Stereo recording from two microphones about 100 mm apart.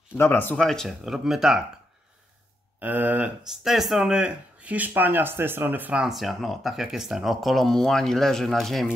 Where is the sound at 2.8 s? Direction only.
15° right (ahead or behind).